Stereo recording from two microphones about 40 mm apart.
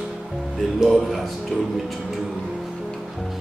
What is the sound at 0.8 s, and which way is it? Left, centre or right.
Speech, centre.